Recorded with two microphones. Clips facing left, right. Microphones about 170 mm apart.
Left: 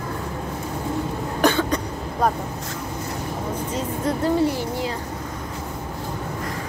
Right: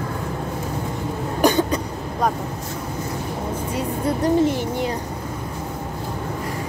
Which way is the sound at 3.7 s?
20° right (ahead or behind).